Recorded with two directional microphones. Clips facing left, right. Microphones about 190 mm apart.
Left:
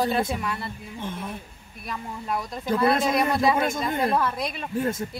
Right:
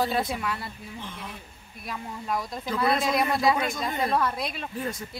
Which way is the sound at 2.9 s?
50° left (ahead or behind).